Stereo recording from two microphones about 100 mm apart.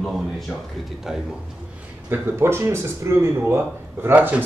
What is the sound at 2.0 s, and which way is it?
Speech, 25° right (ahead or behind).